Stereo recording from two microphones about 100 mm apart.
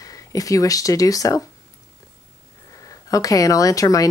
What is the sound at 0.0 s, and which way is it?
Speech, 35° left (ahead or behind).